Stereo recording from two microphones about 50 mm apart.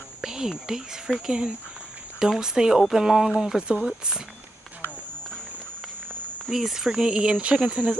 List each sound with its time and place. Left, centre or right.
0.2 s speech: centre
6.5 s speech: centre
7.1 s speech: right